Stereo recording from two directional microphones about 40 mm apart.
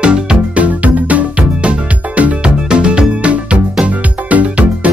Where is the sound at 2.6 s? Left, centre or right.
Right.